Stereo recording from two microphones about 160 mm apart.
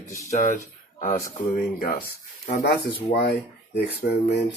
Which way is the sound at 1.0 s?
50° left (ahead or behind).